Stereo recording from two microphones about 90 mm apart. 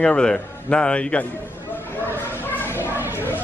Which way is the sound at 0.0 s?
10° left (ahead or behind).